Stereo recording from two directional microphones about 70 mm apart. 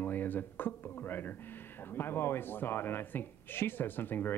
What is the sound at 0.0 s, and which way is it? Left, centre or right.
Speech, left.